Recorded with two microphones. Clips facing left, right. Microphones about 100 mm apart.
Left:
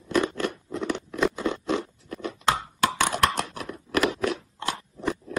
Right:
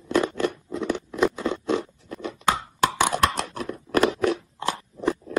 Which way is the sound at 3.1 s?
35° right (ahead or behind).